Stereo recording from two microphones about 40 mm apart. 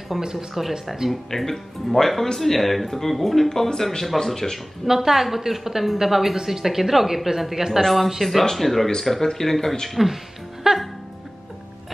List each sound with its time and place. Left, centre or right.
0.2 s a woman's voice: centre
0.6 s speech: centre
1.3 s speech: centre
4.8 s a woman's voice: centre
9.8 s speech: centre
10.6 s music: centre